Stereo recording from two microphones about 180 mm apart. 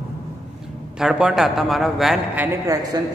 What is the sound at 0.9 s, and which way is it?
A man's voice, 5° right (ahead or behind).